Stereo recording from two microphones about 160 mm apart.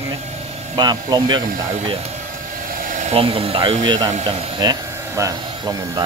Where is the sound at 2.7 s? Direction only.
55° right (ahead or behind).